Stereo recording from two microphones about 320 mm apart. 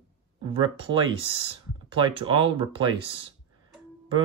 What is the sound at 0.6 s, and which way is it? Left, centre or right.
Speech, centre.